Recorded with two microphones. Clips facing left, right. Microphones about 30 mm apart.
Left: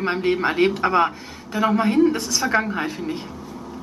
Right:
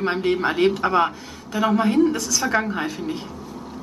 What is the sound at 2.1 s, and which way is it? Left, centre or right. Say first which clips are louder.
Speech: even; left.